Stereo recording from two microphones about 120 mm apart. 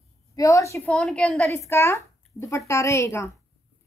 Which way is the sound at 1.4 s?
20° left (ahead or behind).